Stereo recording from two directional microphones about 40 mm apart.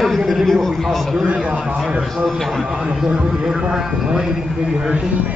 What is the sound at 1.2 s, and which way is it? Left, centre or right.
Speech, right.